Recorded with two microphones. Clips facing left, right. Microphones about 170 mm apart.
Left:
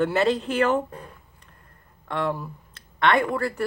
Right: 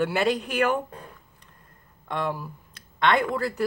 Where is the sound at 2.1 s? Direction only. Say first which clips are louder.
Left 2 dB; 15° right (ahead or behind).